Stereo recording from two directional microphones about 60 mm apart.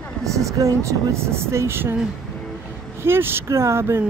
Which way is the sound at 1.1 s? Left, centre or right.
Right.